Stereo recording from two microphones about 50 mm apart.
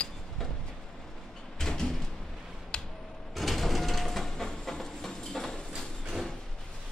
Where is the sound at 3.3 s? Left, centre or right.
Centre.